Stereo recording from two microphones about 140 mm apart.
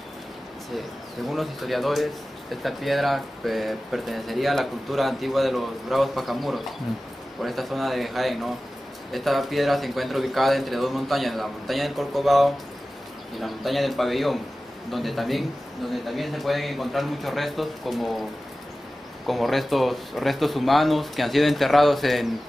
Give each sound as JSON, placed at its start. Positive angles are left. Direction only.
{"t": 0.7, "sound": "speech", "side_deg": 0}
{"t": 19.2, "sound": "speech", "side_deg": 0}